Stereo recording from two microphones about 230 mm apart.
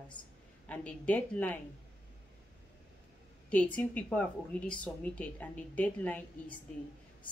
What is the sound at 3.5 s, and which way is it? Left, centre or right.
A woman's voice, centre.